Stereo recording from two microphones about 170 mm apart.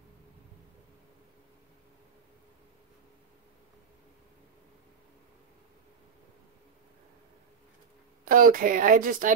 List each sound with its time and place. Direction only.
8.3 s speech: 55° right (ahead or behind)